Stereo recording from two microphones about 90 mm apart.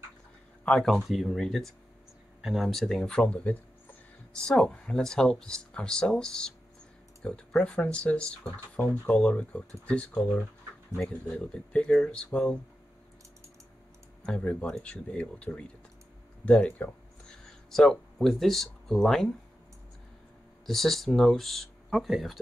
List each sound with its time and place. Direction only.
0.7 s speech: 5° left (ahead or behind)
14.2 s speech: 15° left (ahead or behind)
17.6 s speech: 5° left (ahead or behind)
20.6 s speech: 5° left (ahead or behind)